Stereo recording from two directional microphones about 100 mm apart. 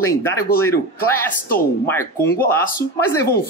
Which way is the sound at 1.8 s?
25° left (ahead or behind).